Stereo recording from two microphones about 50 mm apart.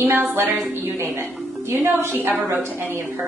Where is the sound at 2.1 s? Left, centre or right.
Right.